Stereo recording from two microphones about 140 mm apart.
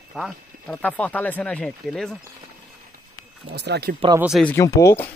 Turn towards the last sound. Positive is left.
turn(degrees=20)  # may be behind; listen again after turning